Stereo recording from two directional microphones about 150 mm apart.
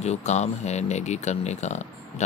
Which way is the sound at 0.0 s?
50° left (ahead or behind).